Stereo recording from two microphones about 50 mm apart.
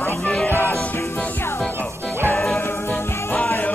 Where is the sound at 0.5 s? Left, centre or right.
Left.